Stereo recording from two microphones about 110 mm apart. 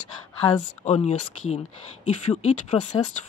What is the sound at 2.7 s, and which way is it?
Speech, 55° left (ahead or behind).